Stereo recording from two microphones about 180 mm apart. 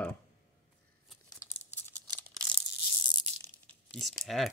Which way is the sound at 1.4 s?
15° left (ahead or behind).